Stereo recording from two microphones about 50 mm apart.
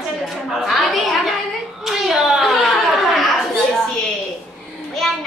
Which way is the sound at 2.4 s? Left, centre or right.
Centre.